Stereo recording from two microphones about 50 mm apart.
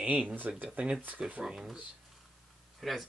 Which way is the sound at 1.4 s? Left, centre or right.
Centre.